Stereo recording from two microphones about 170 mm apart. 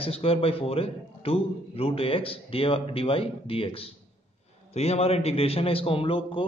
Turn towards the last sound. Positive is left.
turn(degrees=30)  # may be behind; listen again after turning